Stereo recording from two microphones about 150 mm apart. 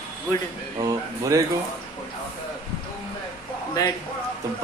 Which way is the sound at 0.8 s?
25° right (ahead or behind).